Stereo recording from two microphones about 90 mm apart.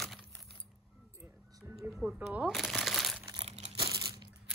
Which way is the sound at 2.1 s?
15° right (ahead or behind).